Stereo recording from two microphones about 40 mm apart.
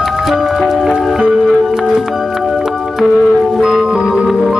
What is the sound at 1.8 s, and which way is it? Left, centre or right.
Music, centre.